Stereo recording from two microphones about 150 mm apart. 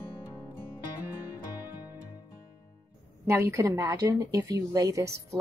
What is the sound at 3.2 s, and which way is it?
A woman's voice, 15° right (ahead or behind).